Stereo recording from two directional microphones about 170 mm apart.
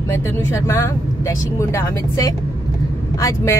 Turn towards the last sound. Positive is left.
turn(degrees=20)  # may be behind; listen again after turning